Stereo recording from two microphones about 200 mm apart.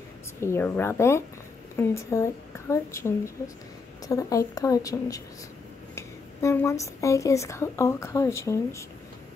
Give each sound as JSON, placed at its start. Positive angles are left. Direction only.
{"t": 0.4, "sound": "a woman's voice", "side_deg": 10}
{"t": 4.1, "sound": "a woman's voice", "side_deg": 15}